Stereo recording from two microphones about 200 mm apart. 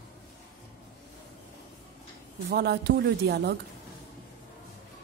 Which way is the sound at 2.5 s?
55° right (ahead or behind).